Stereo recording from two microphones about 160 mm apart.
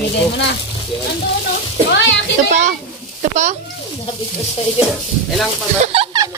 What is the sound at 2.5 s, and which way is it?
Speech, 45° right (ahead or behind).